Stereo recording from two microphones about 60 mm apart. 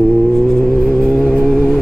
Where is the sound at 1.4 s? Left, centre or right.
Centre.